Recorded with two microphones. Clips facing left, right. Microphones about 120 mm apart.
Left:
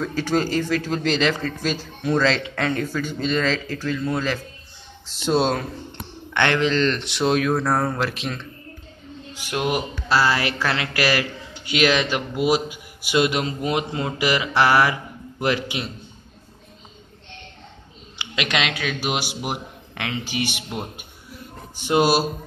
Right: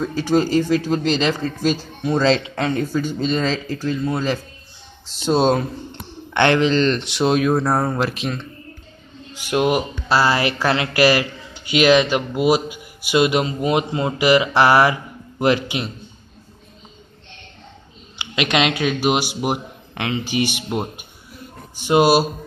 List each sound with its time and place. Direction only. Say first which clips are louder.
0.0 s a man's voice: right 4 dB; 20° right (ahead or behind)
9.5 s a man's voice: right 5 dB; 15° right (ahead or behind)
18.1 s a woman's voice: right 5 dB; 20° right (ahead or behind)
21.9 s speech: right 4 dB; 10° right (ahead or behind)